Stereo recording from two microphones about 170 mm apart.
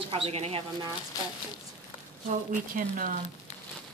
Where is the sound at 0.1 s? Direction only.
35° right (ahead or behind).